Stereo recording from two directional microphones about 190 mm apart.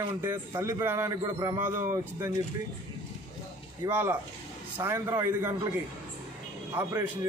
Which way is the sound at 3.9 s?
10° right (ahead or behind).